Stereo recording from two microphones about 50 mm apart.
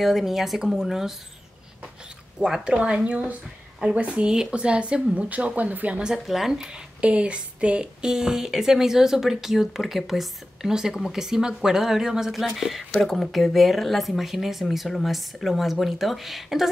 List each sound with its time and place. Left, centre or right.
0.0 s speech: centre
2.4 s speech: centre
6.1 s speech: centre
7.0 s speech: right; by 16.6 s centre